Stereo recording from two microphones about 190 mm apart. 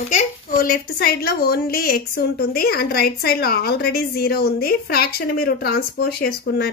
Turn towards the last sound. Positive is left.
turn(degrees=55)  # may be behind; listen again after turning